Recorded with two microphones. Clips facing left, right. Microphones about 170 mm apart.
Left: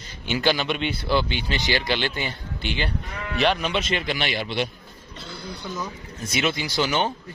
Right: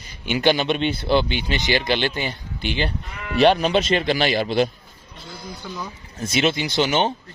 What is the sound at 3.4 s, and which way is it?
Speech, 35° right (ahead or behind).